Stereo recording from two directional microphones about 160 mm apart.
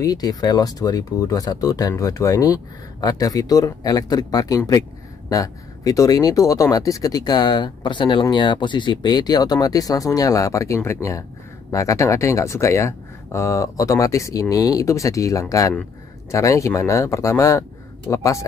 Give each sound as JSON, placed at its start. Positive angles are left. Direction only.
{"t": 0.0, "sound": "speech", "side_deg": 25}